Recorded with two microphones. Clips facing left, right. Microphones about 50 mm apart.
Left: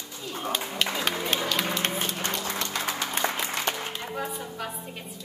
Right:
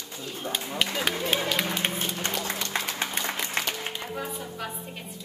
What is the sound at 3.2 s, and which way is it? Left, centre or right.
Applause, left.